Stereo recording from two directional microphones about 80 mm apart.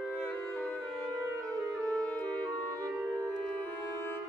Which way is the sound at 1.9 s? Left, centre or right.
Centre.